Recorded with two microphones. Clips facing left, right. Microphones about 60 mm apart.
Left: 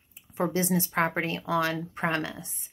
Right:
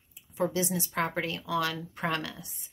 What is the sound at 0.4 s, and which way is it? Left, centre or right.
A woman's voice, left.